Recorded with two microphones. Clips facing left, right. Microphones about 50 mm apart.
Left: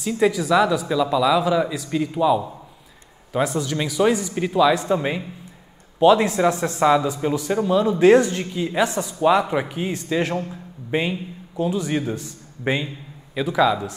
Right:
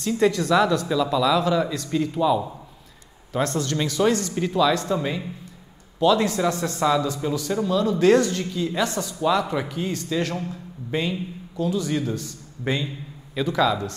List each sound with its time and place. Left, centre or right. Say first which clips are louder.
0.0 s a man's voice: left 1 dB; centre